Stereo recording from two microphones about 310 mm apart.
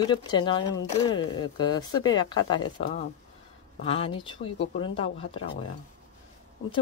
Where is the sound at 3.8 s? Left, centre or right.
Centre.